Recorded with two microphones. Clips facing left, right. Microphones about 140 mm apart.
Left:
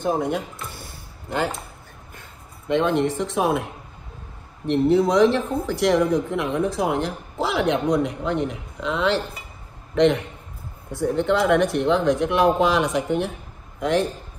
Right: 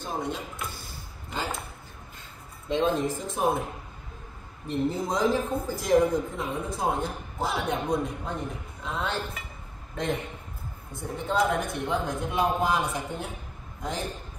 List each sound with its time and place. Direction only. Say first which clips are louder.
0.0 s speech: left 9 dB; 55° left (ahead or behind)
0.7 s a sound: left 2 dB; 60° left (ahead or behind)
2.7 s speech: left 5 dB; 65° left (ahead or behind)
13.7 s a man's voice: left 12 dB; 70° left (ahead or behind)